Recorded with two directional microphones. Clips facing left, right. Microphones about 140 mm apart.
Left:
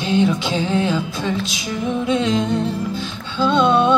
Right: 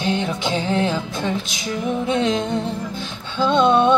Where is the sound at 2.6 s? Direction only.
20° right (ahead or behind).